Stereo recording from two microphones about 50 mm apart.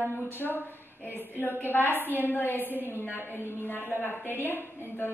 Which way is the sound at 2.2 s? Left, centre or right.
Left.